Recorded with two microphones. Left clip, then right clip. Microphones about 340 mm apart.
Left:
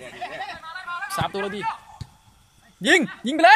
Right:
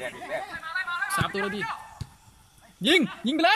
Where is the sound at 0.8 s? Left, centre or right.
Centre.